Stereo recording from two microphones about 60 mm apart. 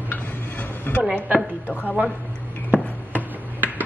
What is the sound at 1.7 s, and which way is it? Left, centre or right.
Speech, left.